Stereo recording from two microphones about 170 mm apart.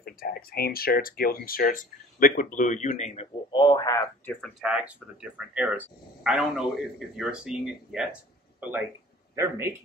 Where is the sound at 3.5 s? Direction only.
25° left (ahead or behind).